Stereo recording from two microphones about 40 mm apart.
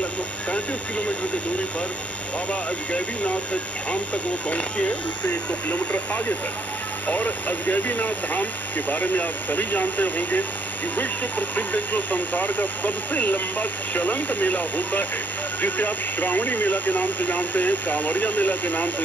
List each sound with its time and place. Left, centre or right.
0.5 s speech: left
3.9 s speech: left
5.3 s speech: left